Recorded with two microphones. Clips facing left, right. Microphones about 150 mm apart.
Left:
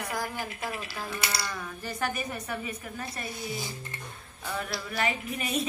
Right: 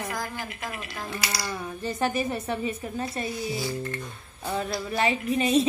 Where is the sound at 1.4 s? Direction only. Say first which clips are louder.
Right 5 dB; 25° right (ahead or behind).